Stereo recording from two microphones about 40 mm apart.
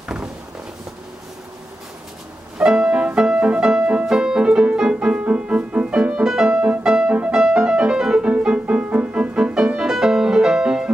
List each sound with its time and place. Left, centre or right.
2.6 s music: right
4.2 s keyboard: right
4.7 s music: right
5.2 s music: right